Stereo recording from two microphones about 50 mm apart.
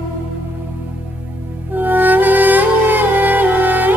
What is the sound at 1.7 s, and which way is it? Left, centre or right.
Music, right.